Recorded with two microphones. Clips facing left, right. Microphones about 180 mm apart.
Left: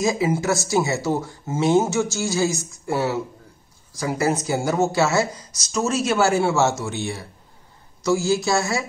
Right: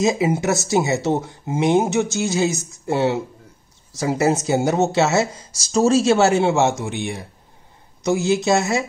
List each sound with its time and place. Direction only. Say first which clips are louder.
0.0 s speech: right 2 dB; 20° right (ahead or behind)